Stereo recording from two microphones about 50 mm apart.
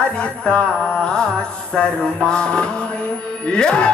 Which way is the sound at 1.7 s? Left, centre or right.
Centre.